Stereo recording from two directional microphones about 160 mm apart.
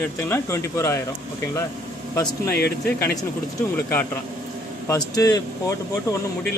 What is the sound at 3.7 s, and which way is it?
Speech, 15° left (ahead or behind).